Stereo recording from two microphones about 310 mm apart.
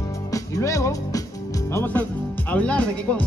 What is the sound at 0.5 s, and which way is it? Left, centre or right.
Speech, centre.